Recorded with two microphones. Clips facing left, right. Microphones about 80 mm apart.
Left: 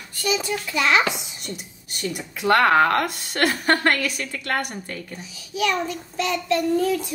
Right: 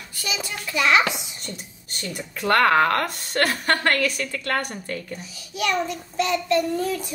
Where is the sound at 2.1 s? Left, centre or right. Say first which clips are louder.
Left 1 dB; centre.